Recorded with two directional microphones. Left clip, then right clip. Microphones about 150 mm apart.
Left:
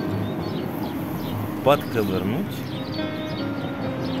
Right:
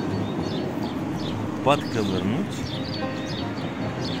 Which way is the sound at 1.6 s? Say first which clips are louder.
Left 3 dB; 40° left (ahead or behind).